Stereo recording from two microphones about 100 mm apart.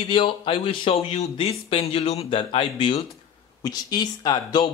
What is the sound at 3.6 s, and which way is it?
Speech, 40° left (ahead or behind).